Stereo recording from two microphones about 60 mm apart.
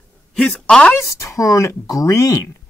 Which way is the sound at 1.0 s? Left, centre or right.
Left.